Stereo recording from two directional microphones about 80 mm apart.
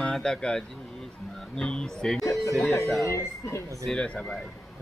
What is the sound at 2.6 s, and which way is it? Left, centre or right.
Speech, left.